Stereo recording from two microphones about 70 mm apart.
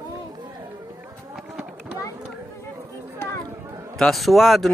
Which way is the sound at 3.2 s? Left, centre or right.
Left.